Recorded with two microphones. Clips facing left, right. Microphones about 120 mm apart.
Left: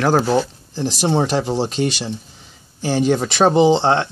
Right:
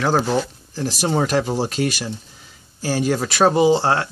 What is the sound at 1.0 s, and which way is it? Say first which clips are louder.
Speech: left 1 dB; 25° left (ahead or behind).